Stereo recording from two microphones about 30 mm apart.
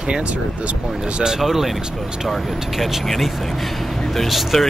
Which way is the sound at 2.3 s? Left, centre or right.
Centre.